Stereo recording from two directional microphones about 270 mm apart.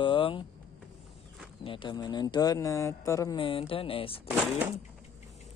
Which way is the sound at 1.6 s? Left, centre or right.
Centre.